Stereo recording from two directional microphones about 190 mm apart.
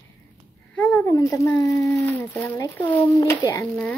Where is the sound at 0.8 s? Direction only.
10° left (ahead or behind).